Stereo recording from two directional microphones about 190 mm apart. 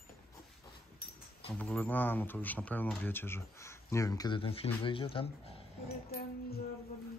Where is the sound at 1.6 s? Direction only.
10° left (ahead or behind); by 5.3 s 30° left (ahead or behind).